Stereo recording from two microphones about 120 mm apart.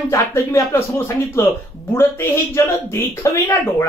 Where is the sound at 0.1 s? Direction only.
20° left (ahead or behind).